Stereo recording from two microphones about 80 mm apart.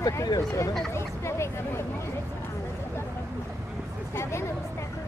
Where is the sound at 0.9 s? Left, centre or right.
Left.